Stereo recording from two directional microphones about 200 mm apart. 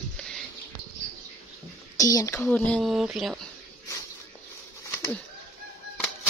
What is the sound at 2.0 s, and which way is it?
Speech, 20° left (ahead or behind).